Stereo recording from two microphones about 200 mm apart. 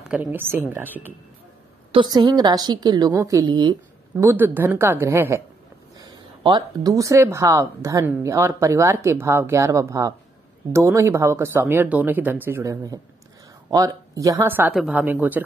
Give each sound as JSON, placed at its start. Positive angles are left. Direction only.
{"t": 0.1, "sound": "speech", "side_deg": -10}
{"t": 1.9, "sound": "a woman's voice", "side_deg": -25}